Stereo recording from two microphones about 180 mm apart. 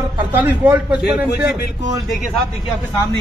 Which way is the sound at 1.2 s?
65° left (ahead or behind).